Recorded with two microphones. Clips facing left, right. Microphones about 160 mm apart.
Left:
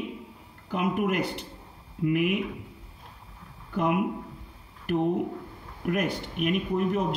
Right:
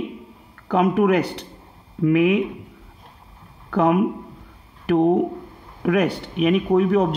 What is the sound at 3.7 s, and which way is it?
Speech, 70° right (ahead or behind).